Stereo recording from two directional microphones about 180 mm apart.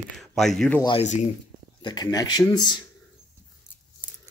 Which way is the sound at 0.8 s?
30° left (ahead or behind).